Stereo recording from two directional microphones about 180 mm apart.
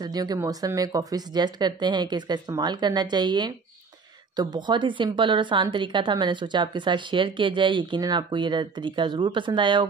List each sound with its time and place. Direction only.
0.0 s a woman's voice: 20° right (ahead or behind)